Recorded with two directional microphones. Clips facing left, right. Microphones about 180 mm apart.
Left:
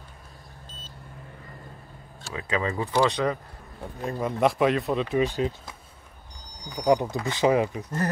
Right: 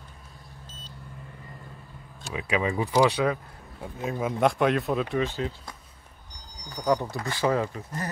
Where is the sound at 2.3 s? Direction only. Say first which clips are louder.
Right 1 dB; 15° right (ahead or behind).